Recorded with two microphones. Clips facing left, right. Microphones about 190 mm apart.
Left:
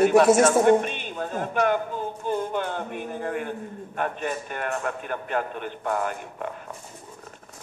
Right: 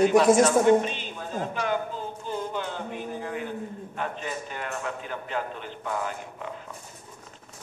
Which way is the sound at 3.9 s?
55° left (ahead or behind).